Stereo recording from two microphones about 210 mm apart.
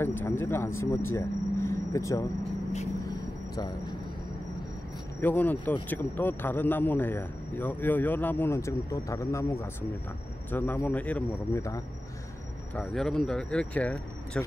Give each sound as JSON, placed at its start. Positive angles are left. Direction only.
{"t": 0.0, "sound": "speech", "side_deg": 10}
{"t": 3.5, "sound": "speech", "side_deg": 20}
{"t": 5.2, "sound": "a man's voice", "side_deg": 10}
{"t": 12.7, "sound": "speech", "side_deg": 5}